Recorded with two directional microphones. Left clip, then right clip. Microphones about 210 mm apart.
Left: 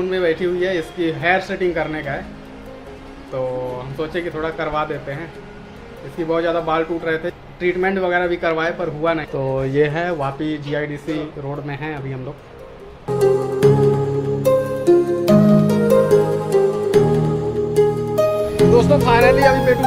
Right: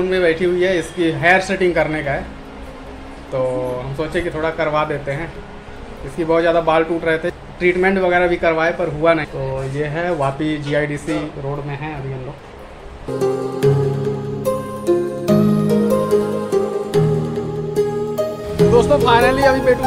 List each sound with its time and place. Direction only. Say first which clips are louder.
0.1 s a man's voice: right 3 dB; 5° left (ahead or behind)
3.3 s speech: right 3 dB; 10° left (ahead or behind)
6.2 s a man's voice: right 4 dB; 5° left (ahead or behind)
9.8 s speech: left 8 dB; 45° left (ahead or behind)
10.2 s speech: right 3 dB; 10° left (ahead or behind)
13.1 s music: left 3 dB; centre (ahead or behind)